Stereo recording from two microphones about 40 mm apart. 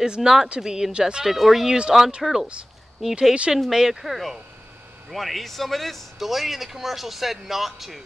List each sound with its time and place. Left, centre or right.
0.0 s speech: centre
0.9 s speech: right
1.2 s speech: centre
1.7 s speech: centre
2.2 s speech: centre
4.0 s speech: centre